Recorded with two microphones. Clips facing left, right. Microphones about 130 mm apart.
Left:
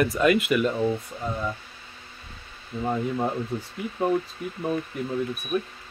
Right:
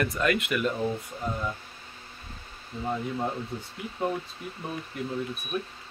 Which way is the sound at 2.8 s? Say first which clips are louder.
Left 4 dB; 20° left (ahead or behind).